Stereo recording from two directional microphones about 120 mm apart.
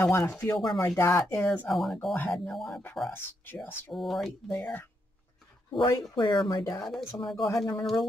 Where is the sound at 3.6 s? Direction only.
15° left (ahead or behind).